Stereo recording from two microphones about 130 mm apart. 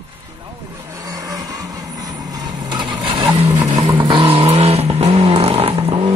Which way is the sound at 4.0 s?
40° right (ahead or behind).